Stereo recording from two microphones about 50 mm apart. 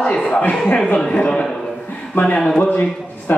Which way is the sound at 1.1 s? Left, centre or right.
Left.